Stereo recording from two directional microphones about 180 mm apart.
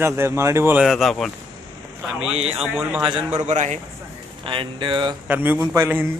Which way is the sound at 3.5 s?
40° right (ahead or behind).